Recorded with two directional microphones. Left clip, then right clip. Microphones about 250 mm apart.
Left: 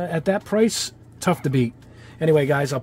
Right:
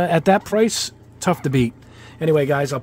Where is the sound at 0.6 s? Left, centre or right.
Centre.